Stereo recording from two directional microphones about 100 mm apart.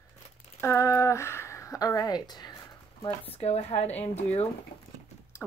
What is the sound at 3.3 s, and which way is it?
A woman's voice, 90° left.